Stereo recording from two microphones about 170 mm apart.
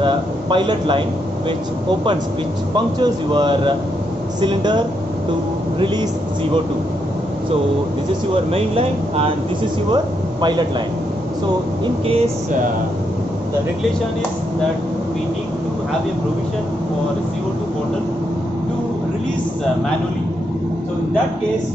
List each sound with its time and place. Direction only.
0.0 s a man's voice: 30° right (ahead or behind)
2.7 s a man's voice: 25° right (ahead or behind)
8.5 s speech: 35° right (ahead or behind)
11.8 s speech: 35° right (ahead or behind)